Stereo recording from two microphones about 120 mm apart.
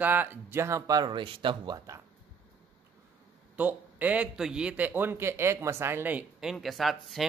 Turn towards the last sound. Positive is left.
turn(degrees=0)  # may be behind; listen again after turning